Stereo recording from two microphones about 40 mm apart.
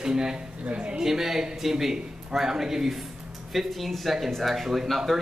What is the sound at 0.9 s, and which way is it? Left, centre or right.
Speech, centre.